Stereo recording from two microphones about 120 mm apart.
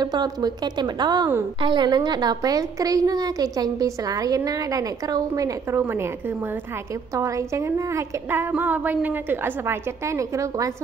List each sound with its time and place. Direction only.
0.0 s a woman's voice: 35° right (ahead or behind)